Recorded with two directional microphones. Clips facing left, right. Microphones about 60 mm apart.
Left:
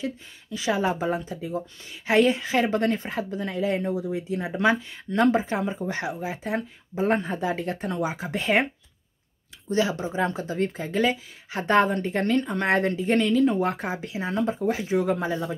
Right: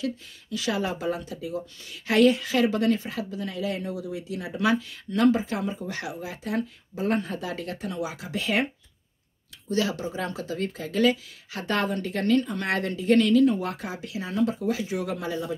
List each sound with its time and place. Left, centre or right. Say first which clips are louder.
0.0 s a woman's voice: right 1 dB; left
9.7 s speech: left 2 dB; left